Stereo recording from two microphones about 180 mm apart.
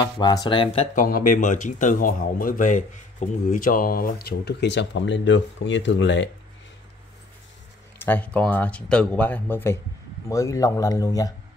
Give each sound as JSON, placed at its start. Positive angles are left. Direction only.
{"t": 0.0, "sound": "a man's voice", "side_deg": 20}
{"t": 0.9, "sound": "speech", "side_deg": 50}
{"t": 8.0, "sound": "a man's voice", "side_deg": 10}